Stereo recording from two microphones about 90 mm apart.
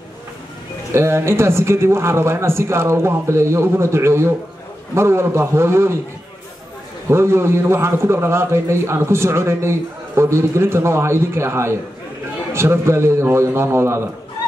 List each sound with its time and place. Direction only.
0.9 s a man's voice: 30° right (ahead or behind)
7.1 s a man's voice: 30° right (ahead or behind)